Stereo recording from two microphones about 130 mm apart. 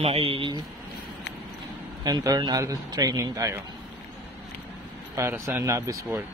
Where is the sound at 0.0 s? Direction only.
50° right (ahead or behind).